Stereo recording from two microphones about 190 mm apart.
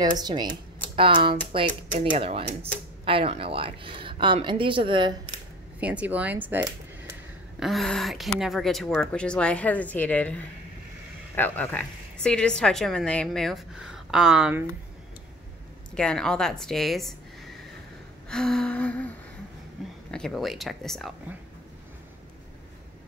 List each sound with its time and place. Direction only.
0.0 s speech: 20° right (ahead or behind)
5.8 s speech: 5° right (ahead or behind)
7.6 s a woman's voice: centre (ahead or behind)
15.9 s a woman's voice: 5° left (ahead or behind)
18.3 s a woman's voice: 5° left (ahead or behind)